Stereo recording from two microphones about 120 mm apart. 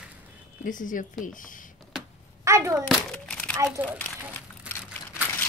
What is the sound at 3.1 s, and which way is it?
Crumpling, 10° left (ahead or behind).